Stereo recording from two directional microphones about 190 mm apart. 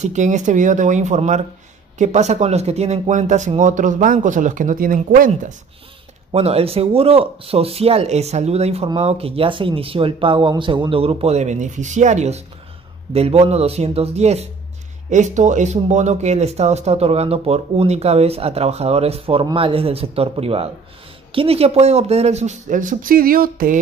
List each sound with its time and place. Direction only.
0.0 s speech: 40° right (ahead or behind)
6.3 s speech: 30° right (ahead or behind); by 23.8 s 50° right (ahead or behind)